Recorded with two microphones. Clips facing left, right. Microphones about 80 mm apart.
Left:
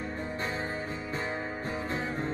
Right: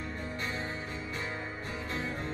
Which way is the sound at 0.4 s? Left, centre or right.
Left.